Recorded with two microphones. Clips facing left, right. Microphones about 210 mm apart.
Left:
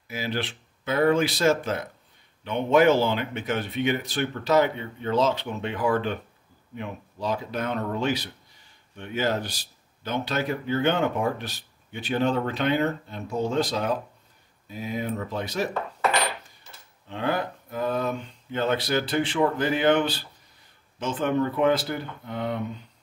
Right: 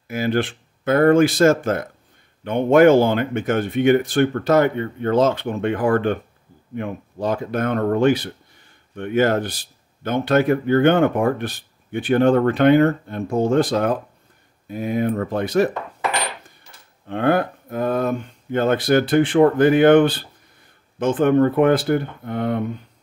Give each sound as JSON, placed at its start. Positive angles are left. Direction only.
{"t": 0.1, "sound": "speech", "side_deg": -50}
{"t": 17.1, "sound": "speech", "side_deg": -55}